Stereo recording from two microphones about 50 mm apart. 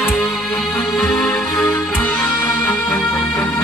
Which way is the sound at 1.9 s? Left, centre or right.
Left.